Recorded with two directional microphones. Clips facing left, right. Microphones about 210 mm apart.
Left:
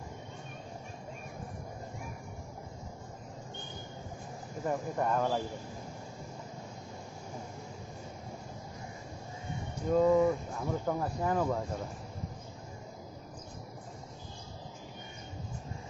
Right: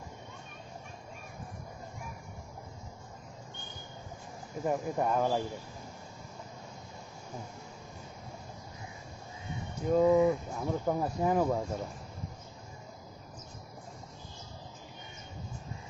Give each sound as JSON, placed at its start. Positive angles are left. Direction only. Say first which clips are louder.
{"t": 4.6, "sound": "speech", "louder": "right 2 dB", "side_deg": -10}
{"t": 9.8, "sound": "speech", "louder": "right 1 dB", "side_deg": -10}